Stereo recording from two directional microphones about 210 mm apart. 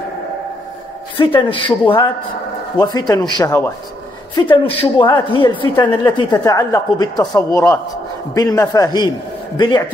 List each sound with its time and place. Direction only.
1.1 s speech: 25° left (ahead or behind)